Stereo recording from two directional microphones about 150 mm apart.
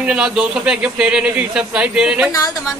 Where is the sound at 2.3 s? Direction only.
25° left (ahead or behind).